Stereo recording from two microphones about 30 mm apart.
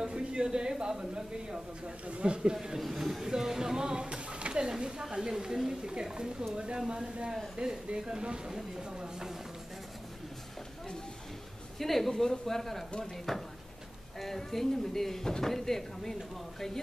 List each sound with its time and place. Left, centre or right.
0.0 s speech: right
2.0 s speech: right
2.5 s a woman's voice: centre
11.8 s speech: centre
15.2 s speech: left